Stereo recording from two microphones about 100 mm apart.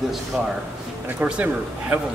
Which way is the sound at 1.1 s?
15° right (ahead or behind).